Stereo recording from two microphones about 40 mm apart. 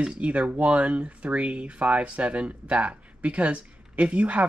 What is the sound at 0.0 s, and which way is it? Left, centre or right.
Speech, right.